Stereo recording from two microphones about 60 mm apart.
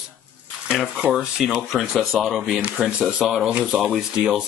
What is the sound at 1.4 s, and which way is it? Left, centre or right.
Speech, centre.